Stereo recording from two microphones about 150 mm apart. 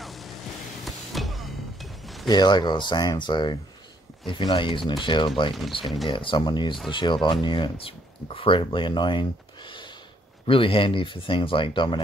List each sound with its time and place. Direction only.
0.0 s vehicle: centre (ahead or behind)
0.8 s a sound: centre (ahead or behind)
2.2 s speech: 30° left (ahead or behind)
5.5 s speech: centre (ahead or behind)
6.0 s speech: 35° left (ahead or behind)
10.4 s speech: 35° left (ahead or behind)